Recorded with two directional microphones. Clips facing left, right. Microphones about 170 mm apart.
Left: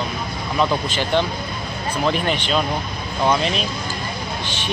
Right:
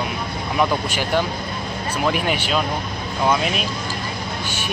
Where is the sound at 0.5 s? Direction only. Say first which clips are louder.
Even; 10° right (ahead or behind).